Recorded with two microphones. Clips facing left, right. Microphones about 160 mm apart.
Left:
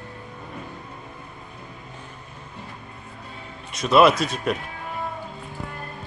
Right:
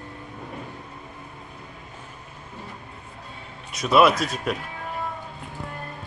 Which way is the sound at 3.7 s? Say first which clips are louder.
Left 2 dB; centre (ahead or behind).